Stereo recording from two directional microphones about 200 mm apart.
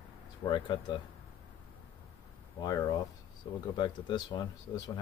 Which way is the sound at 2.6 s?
20° left (ahead or behind).